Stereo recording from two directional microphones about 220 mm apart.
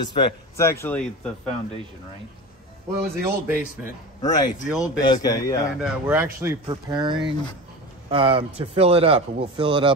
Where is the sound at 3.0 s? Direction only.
10° right (ahead or behind).